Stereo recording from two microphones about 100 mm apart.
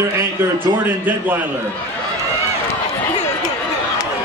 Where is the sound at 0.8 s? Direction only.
20° right (ahead or behind).